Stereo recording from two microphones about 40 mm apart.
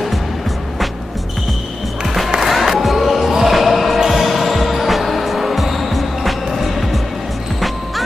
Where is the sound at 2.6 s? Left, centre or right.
Centre.